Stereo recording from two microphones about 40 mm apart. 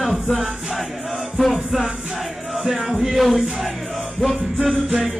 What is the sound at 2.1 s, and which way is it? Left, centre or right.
Music, centre.